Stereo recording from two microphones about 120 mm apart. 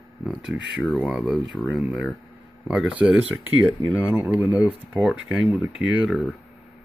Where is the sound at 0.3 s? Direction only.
5° right (ahead or behind).